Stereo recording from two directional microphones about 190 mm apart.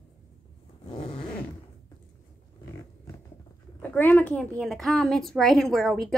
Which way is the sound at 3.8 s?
10° left (ahead or behind).